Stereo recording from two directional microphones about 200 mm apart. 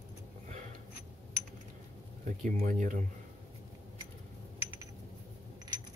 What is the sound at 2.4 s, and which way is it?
Speech, 40° right (ahead or behind).